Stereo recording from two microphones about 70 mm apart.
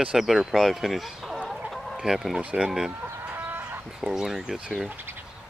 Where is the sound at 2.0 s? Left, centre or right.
Centre.